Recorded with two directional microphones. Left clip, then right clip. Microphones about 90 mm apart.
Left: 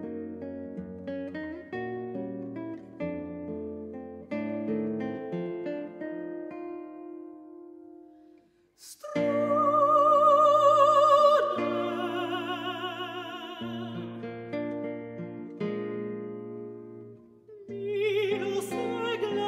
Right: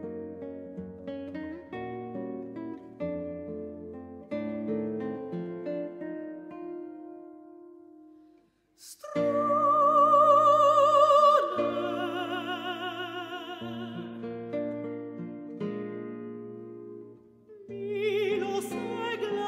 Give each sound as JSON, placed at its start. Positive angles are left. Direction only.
{"t": 0.0, "sound": "music", "side_deg": 25}
{"t": 9.1, "sound": "music", "side_deg": 35}
{"t": 9.6, "sound": "music", "side_deg": 0}
{"t": 14.2, "sound": "music", "side_deg": 35}
{"t": 17.8, "sound": "music", "side_deg": 0}